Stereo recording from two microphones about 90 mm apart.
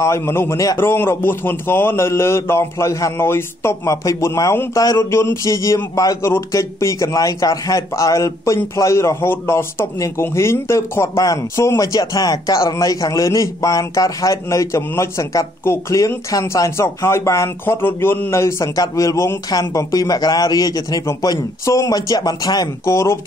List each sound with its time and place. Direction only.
0.0 s a man's voice: 30° left (ahead or behind); by 22.7 s 45° left (ahead or behind)
22.8 s speech: 30° left (ahead or behind)